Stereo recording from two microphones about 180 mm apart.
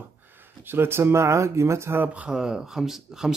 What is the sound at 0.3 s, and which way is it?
Speech, 10° right (ahead or behind).